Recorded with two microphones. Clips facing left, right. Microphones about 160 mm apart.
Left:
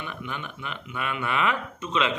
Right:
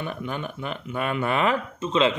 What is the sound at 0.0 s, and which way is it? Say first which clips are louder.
Speech: right 5 dB; 40° right (ahead or behind).